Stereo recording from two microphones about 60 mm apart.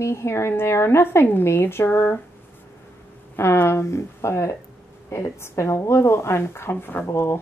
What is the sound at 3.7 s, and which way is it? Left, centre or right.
Speech, left.